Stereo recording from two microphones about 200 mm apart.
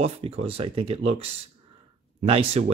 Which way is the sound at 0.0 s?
30° right (ahead or behind).